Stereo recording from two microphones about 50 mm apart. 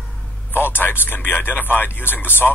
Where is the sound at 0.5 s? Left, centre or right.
Left.